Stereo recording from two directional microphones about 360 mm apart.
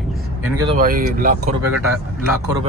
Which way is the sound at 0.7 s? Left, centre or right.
Right.